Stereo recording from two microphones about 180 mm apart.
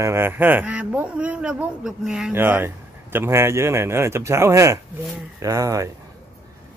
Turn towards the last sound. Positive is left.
turn(degrees=-20)  # may be behind; listen again after turning